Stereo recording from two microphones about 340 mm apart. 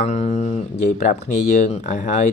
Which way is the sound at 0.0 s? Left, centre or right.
Centre.